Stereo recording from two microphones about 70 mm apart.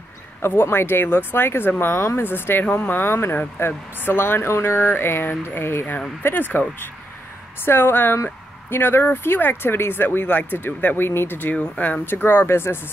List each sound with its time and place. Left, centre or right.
0.5 s speech: left
7.6 s speech: left